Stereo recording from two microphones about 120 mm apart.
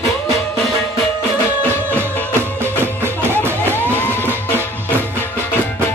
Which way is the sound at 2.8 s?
20° right (ahead or behind).